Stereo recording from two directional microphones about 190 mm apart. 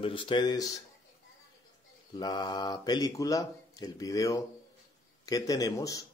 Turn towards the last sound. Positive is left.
turn(degrees=20)  # may be behind; listen again after turning